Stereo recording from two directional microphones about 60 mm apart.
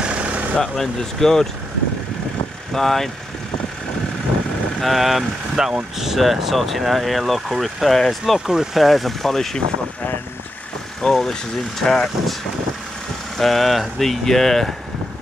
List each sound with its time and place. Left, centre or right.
0.0 s vehicle: centre
0.6 s speech: centre
2.7 s speech: centre
4.8 s speech: centre
11.0 s speech: centre
13.4 s speech: centre